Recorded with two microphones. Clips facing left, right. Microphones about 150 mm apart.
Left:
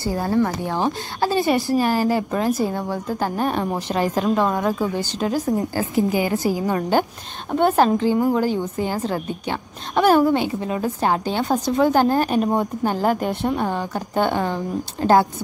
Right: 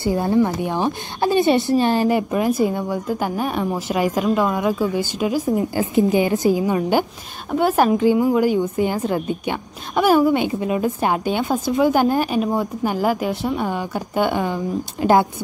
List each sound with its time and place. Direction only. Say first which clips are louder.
0.0 s a woman's voice: right 3 dB; 20° right (ahead or behind)
5.9 s a woman's voice: right 3 dB; 25° right (ahead or behind)